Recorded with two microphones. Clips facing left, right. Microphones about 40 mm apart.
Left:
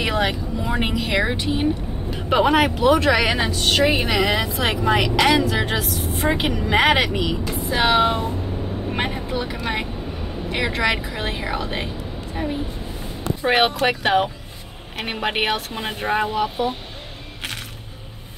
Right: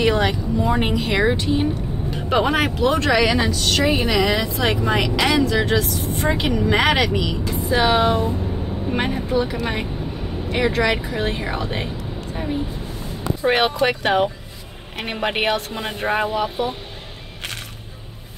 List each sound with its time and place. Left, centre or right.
0.0 s speech: centre
3.2 s speech: left
5.2 s speech: centre
7.8 s speech: left
8.9 s a woman's voice: centre
13.4 s speech: centre
13.8 s a woman's voice: centre
16.1 s a woman's voice: centre